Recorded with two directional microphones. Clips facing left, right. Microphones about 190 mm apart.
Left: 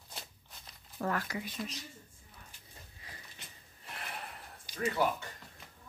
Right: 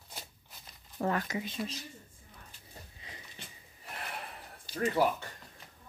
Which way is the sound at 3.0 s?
20° right (ahead or behind).